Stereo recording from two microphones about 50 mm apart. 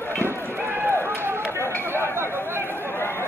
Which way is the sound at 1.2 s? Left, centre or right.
Right.